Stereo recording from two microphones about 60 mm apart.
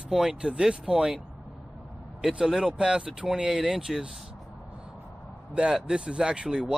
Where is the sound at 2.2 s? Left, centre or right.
Centre.